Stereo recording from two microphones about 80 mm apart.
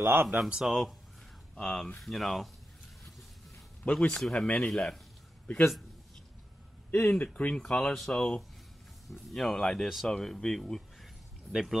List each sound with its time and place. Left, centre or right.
0.0 s speech: right
0.4 s speech: centre
1.5 s speech: centre
3.9 s speech: centre
6.9 s speech: centre